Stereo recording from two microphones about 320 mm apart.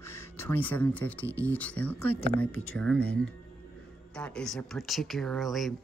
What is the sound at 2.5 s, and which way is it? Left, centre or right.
Speech, left.